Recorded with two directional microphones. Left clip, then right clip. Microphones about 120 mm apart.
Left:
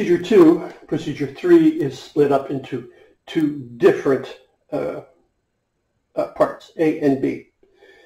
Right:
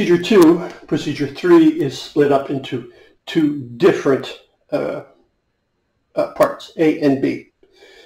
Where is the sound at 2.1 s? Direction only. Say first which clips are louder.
Right 2 dB; 35° right (ahead or behind).